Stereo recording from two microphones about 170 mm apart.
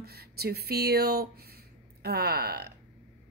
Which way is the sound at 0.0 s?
70° right (ahead or behind).